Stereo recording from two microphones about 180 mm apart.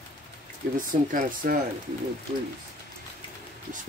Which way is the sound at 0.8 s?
50° right (ahead or behind).